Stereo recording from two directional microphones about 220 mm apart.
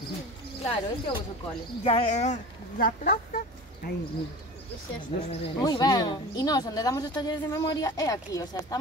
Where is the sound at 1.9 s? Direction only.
30° left (ahead or behind).